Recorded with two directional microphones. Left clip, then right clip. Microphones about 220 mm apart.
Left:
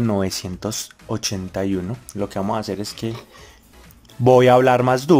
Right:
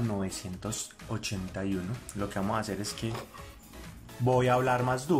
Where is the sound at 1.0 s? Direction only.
30° left (ahead or behind).